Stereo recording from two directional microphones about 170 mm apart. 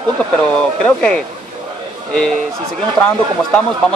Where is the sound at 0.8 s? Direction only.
5° left (ahead or behind).